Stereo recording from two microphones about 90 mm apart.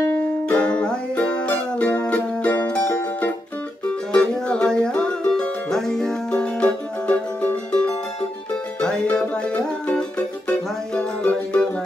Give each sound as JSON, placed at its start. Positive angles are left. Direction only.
{"t": 0.1, "sound": "music", "side_deg": 15}
{"t": 8.8, "sound": "music", "side_deg": 10}